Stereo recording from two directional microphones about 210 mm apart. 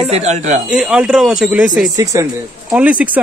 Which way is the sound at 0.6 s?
5° right (ahead or behind).